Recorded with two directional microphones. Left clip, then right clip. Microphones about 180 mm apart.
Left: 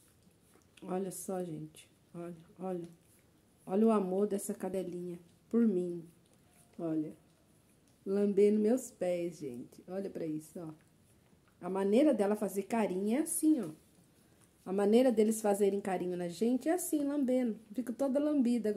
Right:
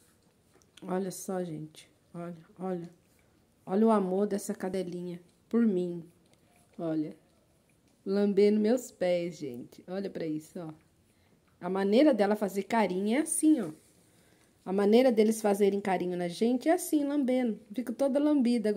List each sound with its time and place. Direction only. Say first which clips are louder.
0.7 s a woman's voice: right 4 dB; 15° right (ahead or behind)
8.1 s a woman's voice: right 3 dB; 15° right (ahead or behind)